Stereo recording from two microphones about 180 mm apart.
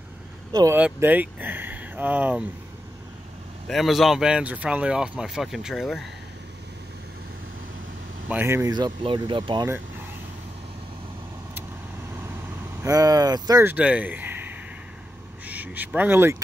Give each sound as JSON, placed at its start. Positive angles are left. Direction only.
{"t": 0.5, "sound": "speech", "side_deg": -20}
{"t": 0.7, "sound": "speech", "side_deg": -10}
{"t": 3.6, "sound": "speech", "side_deg": 0}
{"t": 8.3, "sound": "speech", "side_deg": -10}
{"t": 12.8, "sound": "speech", "side_deg": -20}